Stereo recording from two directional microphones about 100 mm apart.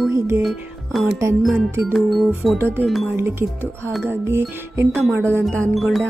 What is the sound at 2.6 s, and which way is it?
Speech, 20° right (ahead or behind).